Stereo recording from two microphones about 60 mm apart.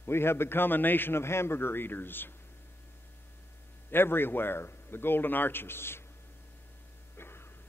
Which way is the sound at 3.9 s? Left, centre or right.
Left.